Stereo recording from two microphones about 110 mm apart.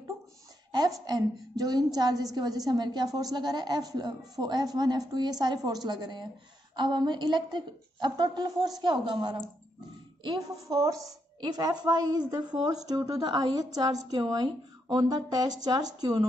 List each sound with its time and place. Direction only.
0.7 s a woman's voice: 35° right (ahead or behind)